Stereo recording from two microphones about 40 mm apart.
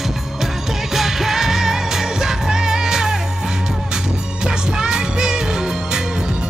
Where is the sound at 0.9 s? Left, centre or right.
Centre.